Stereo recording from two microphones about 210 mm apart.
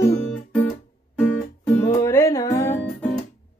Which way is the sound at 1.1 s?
10° left (ahead or behind).